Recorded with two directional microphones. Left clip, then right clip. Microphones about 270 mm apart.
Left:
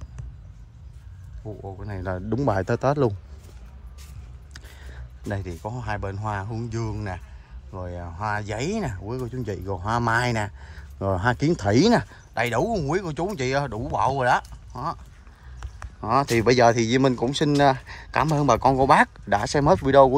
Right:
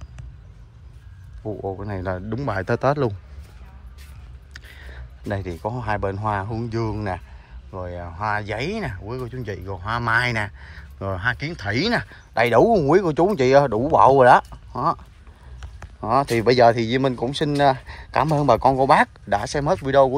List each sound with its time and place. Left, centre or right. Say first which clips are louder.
1.4 s speech: right 9 dB; centre
4.6 s a sound: right 4 dB; centre
5.2 s speech: right 5 dB; centre
12.4 s speech: right 10 dB; centre
16.1 s speech: right 2 dB; centre